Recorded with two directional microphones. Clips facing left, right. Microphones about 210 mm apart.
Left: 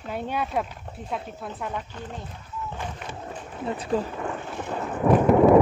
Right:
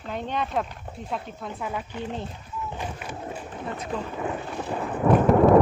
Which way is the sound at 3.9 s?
40° left (ahead or behind).